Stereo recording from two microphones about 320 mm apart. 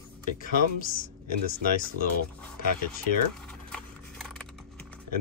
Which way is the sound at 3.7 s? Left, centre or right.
Centre.